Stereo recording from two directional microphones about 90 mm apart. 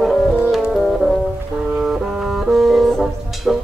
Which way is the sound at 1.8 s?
5° right (ahead or behind).